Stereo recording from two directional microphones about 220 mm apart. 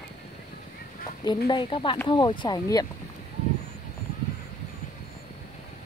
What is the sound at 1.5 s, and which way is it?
Speech, 20° left (ahead or behind).